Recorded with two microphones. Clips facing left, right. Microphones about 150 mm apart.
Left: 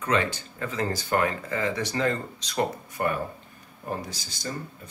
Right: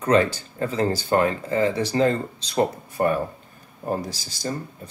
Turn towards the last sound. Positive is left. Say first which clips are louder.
# right 6 dB
turn(degrees=-35)  # may be behind; listen again after turning